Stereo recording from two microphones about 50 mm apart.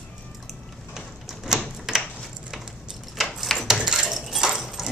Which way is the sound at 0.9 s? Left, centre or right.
Centre.